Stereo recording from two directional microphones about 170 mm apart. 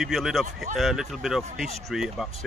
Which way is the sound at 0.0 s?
Centre (ahead or behind).